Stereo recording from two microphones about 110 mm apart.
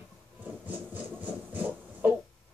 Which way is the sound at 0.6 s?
15° right (ahead or behind).